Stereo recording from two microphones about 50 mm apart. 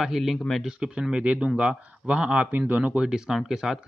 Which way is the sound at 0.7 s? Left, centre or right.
Centre.